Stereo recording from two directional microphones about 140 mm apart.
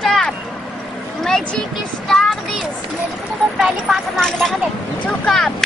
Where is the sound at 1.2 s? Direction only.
5° left (ahead or behind).